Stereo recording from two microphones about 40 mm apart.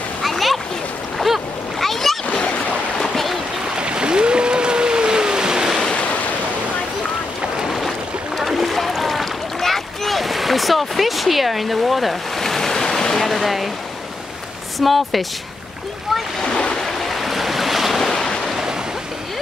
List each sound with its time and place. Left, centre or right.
0.2 s splash: centre
1.2 s boat: centre
2.3 s a sound: left
3.0 s a sound: centre
3.7 s boat: right
7.5 s boat: centre
8.4 s rowboat: centre
12.4 s waves: centre
14.8 s speech: centre
16.4 s splash: left
16.8 s waves: centre
18.1 s waves: centre